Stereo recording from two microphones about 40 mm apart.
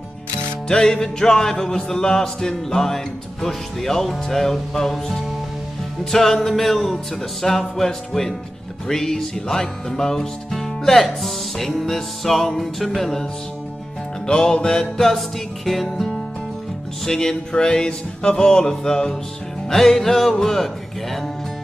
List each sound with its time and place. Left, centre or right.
0.7 s music: centre
6.1 s music: centre
17.0 s music: centre
20.3 s a man's voice: centre